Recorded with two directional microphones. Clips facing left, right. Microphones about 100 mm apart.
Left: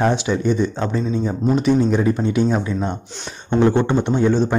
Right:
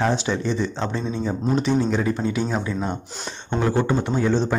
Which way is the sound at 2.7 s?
5° right (ahead or behind).